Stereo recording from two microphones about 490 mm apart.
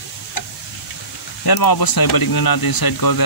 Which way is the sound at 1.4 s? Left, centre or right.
Left.